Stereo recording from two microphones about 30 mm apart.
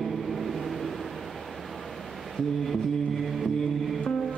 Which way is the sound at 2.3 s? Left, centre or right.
Centre.